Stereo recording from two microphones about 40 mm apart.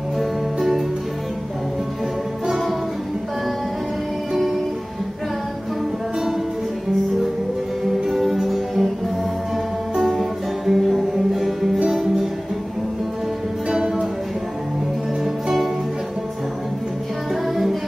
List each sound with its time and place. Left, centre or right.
0.2 s music: centre
7.8 s music: centre
10.7 s music: centre
13.7 s music: centre